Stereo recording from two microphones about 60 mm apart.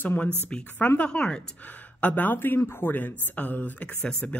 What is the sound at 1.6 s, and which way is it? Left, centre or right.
A woman's voice, left.